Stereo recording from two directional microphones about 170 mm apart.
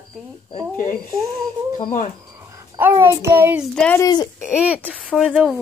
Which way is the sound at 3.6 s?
5° left (ahead or behind).